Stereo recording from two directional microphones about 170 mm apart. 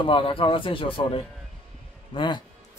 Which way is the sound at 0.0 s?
30° left (ahead or behind).